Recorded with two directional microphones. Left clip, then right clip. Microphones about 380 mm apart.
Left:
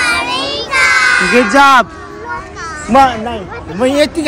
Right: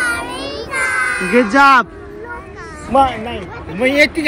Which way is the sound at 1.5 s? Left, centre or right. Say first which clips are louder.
Left 2 dB; centre.